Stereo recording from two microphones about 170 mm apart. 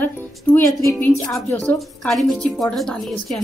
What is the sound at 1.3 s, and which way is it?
A woman's voice, centre (ahead or behind).